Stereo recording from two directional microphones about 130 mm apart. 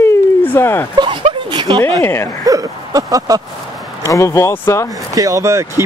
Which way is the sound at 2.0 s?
15° left (ahead or behind).